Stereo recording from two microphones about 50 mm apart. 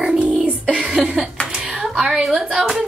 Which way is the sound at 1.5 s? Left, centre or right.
Right.